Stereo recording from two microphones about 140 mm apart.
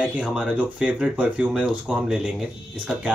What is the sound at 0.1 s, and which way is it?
Speech, 5° right (ahead or behind).